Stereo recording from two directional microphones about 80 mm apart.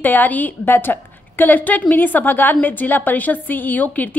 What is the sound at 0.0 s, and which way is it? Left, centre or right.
A woman's voice, left.